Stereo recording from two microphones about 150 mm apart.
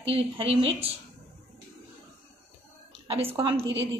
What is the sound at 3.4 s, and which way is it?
Speech, 35° right (ahead or behind).